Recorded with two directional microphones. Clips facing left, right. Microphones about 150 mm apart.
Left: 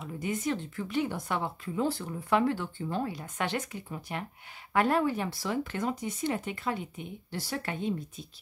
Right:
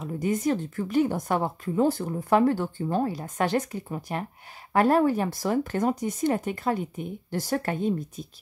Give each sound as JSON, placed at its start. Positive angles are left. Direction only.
{"t": 0.0, "sound": "speech", "side_deg": -40}